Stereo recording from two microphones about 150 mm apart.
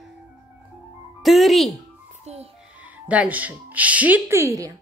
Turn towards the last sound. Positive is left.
turn(degrees=-20)  # may be behind; listen again after turning